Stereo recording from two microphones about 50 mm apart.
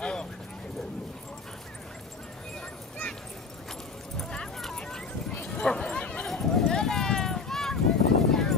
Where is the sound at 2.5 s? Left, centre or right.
Centre.